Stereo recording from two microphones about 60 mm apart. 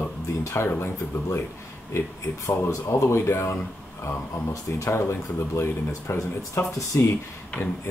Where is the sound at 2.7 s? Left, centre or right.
Left.